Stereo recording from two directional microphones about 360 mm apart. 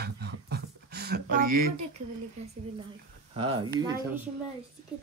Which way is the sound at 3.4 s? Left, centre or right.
Centre.